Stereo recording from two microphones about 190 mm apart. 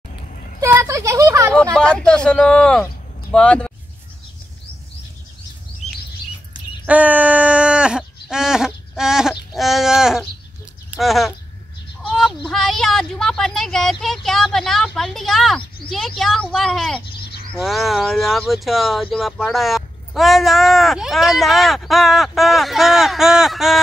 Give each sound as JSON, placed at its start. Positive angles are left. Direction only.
{"t": 0.6, "sound": "speech", "side_deg": -15}
{"t": 1.5, "sound": "speech", "side_deg": 5}
{"t": 6.9, "sound": "a sound", "side_deg": -10}
{"t": 16.2, "sound": "speech", "side_deg": 0}